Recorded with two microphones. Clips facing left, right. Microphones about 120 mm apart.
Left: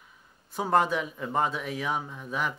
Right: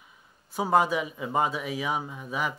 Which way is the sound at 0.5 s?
5° right (ahead or behind).